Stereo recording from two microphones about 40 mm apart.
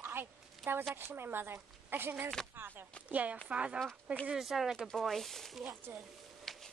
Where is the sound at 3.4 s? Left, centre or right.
Right.